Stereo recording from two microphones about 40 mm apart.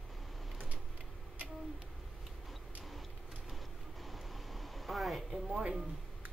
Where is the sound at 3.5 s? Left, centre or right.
Centre.